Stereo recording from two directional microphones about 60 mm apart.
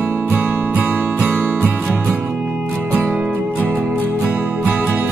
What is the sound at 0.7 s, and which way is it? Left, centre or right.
Music, right.